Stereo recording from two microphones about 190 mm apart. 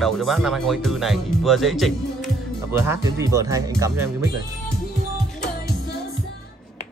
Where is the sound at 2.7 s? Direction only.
10° right (ahead or behind).